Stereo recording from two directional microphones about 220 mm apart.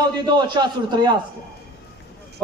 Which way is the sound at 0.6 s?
20° right (ahead or behind).